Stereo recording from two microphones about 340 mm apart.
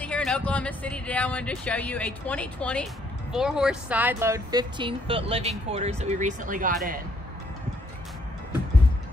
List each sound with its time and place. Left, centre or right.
0.0 s speech: centre; by 6.7 s right